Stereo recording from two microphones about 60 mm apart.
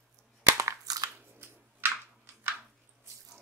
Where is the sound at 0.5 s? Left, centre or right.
Right.